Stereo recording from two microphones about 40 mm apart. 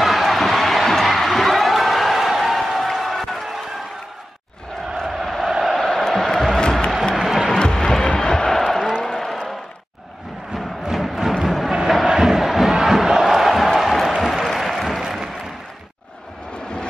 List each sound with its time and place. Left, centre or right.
0.0 s crowd: centre
5.0 s crowd: centre
6.0 s music: centre
9.0 s a sound: centre
10.5 s music: centre
11.9 s crowd: centre
13.9 s a sound: centre